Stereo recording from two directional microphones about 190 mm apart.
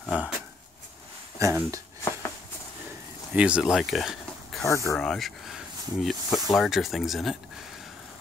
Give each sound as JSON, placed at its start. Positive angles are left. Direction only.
{"t": 0.0, "sound": "speech", "side_deg": -5}
{"t": 1.4, "sound": "speech", "side_deg": -15}
{"t": 3.3, "sound": "speech", "side_deg": -5}
{"t": 4.6, "sound": "speech", "side_deg": 15}
{"t": 4.9, "sound": "speech", "side_deg": 5}